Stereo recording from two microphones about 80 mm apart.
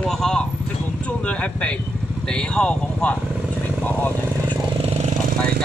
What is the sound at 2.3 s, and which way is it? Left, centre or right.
Speech, centre.